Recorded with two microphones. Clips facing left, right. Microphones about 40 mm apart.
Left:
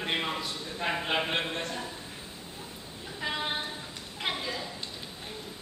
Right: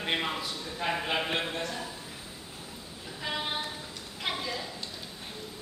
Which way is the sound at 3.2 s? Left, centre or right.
Centre.